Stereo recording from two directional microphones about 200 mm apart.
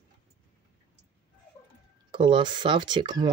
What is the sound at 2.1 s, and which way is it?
Speech, 25° right (ahead or behind).